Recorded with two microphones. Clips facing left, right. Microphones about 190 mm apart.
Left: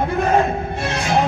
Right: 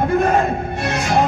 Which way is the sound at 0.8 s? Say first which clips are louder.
Right 1 dB; 55° right (ahead or behind).